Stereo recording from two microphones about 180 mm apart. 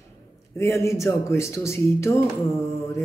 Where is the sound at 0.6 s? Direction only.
15° left (ahead or behind).